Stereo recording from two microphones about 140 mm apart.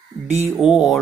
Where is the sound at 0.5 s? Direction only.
5° right (ahead or behind).